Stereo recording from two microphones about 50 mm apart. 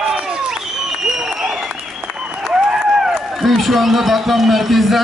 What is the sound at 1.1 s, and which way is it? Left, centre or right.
Applause, centre.